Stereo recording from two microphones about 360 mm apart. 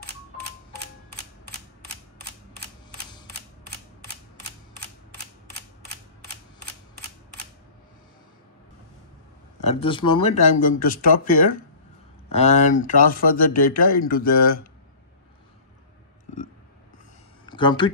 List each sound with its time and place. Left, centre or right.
9.6 s speech: centre
17.5 s speech: centre